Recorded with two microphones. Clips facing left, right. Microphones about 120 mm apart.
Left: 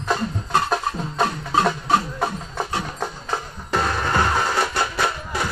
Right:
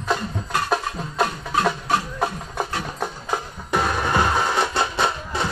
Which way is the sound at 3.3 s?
5° right (ahead or behind).